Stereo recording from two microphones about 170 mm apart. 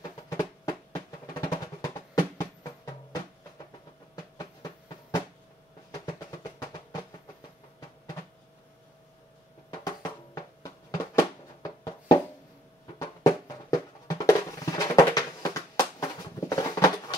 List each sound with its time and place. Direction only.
0.3 s drum: 20° left (ahead or behind)
4.1 s a sound: 25° left (ahead or behind)
6.0 s drum: 25° left (ahead or behind)
9.7 s music: 20° left (ahead or behind)
14.0 s music: 20° left (ahead or behind)